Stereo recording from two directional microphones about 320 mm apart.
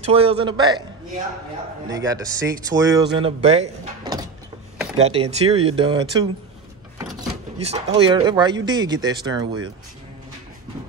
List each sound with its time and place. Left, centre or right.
0.0 s speech: centre
1.9 s speech: centre
7.6 s speech: centre